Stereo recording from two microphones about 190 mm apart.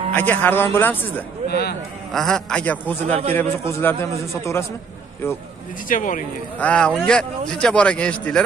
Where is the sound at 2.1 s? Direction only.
Centre (ahead or behind).